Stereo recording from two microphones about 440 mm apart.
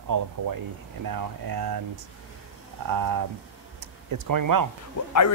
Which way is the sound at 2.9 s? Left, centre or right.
Right.